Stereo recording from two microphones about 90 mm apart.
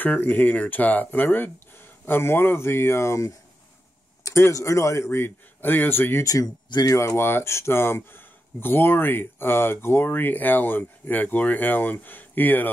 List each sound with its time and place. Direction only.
0.0 s speech: 20° left (ahead or behind)
6.2 s speech: 45° left (ahead or behind)
7.0 s speech: 30° left (ahead or behind)